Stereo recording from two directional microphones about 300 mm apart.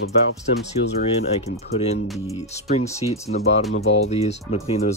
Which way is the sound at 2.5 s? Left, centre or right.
Left.